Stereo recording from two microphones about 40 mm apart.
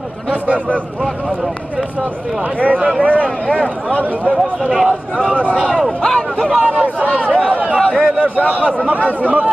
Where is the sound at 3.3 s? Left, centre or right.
Centre.